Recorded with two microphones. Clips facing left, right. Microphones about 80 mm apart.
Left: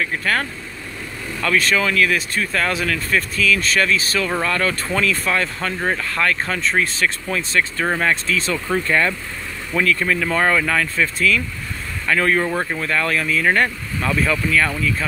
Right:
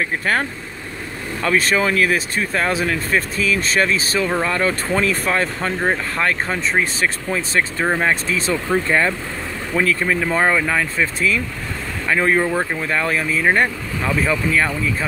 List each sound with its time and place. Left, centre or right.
0.0 s speech: right
6.7 s speech: centre
7.3 s speech: right
7.9 s speech: centre
12.4 s speech: centre
12.8 s speech: right